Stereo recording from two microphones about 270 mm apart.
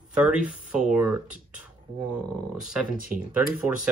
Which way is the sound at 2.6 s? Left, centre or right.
Centre.